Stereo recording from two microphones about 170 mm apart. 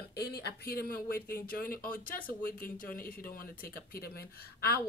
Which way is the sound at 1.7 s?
55° left (ahead or behind).